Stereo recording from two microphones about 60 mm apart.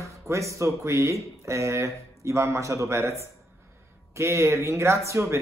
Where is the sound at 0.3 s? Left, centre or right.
Right.